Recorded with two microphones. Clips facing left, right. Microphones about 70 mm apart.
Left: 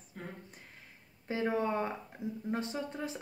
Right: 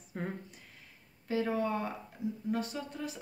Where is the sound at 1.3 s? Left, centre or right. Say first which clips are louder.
Even; left.